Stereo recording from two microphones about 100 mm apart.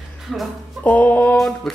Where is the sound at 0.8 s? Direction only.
15° left (ahead or behind).